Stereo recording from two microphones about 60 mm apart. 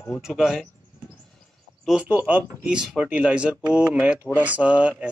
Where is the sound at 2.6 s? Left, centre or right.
Centre.